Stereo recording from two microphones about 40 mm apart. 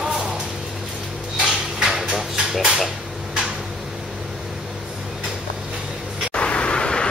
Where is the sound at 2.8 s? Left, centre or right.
Centre.